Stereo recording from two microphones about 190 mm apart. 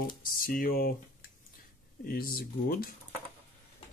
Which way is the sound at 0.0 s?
50° left (ahead or behind).